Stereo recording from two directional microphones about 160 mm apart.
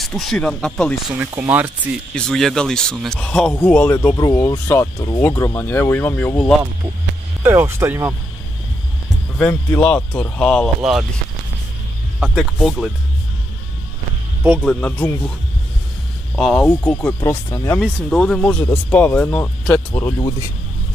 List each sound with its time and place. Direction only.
0.0 s speech: centre (ahead or behind)
1.3 s speech: 15° right (ahead or behind)
2.1 s speech: 5° left (ahead or behind)
7.4 s speech: 15° right (ahead or behind)
9.5 s speech: 10° left (ahead or behind)
12.4 s speech: centre (ahead or behind)
14.6 s speech: 5° left (ahead or behind)
16.3 s speech: centre (ahead or behind)
16.6 s speech: 10° left (ahead or behind)
17.8 s speech: 5° left (ahead or behind)
20.2 s speech: 30° left (ahead or behind)